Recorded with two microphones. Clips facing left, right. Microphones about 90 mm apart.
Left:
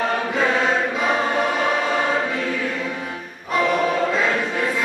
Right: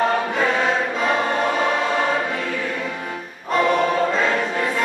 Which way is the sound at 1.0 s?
5° left (ahead or behind).